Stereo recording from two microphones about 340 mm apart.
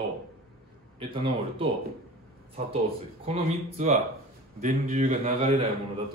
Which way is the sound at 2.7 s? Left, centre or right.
Centre.